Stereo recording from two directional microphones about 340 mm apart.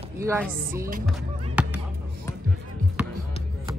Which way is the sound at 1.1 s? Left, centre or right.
Centre.